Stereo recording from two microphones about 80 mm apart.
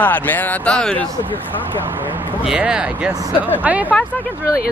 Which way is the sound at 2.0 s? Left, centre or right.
Right.